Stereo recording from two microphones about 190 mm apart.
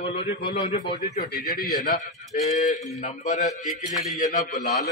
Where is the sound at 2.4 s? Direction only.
35° left (ahead or behind).